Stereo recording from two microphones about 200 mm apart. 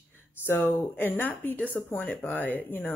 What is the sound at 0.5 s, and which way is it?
Speech, 10° left (ahead or behind).